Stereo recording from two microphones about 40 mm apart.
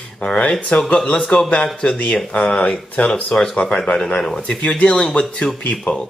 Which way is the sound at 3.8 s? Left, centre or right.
Centre.